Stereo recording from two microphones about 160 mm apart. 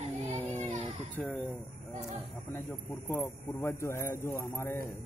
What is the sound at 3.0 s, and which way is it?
Speech, 15° left (ahead or behind).